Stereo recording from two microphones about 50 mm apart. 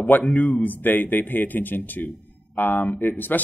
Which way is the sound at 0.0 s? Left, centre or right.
Left.